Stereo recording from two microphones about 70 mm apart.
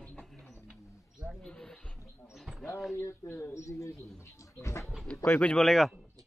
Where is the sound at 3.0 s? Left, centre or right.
Left.